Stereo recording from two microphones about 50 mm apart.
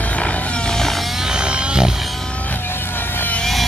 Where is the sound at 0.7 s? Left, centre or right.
Centre.